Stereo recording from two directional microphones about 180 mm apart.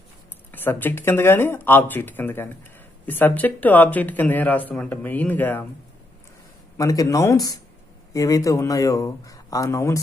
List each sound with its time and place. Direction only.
0.5 s speech: 10° left (ahead or behind)
6.8 s speech: 20° left (ahead or behind)